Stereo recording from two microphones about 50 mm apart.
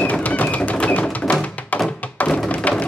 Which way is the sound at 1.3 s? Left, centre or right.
Left.